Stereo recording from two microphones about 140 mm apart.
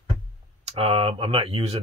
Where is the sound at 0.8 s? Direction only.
40° right (ahead or behind).